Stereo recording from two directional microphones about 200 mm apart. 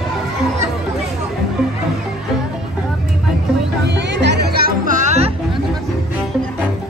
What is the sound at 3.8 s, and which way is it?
Music, 60° right (ahead or behind).